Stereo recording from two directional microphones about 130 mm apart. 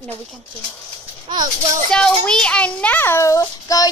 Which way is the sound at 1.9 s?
5° left (ahead or behind).